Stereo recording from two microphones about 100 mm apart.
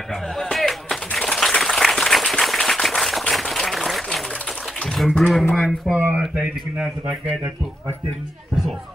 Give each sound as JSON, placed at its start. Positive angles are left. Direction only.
{"t": 0.4, "sound": "music", "side_deg": 0}
{"t": 4.9, "sound": "speech", "side_deg": 0}
{"t": 5.9, "sound": "speech", "side_deg": -20}